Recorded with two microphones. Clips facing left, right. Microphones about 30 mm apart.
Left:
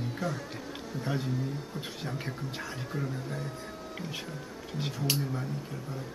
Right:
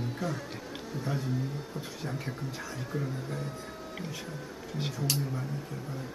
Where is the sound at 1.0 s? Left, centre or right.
Centre.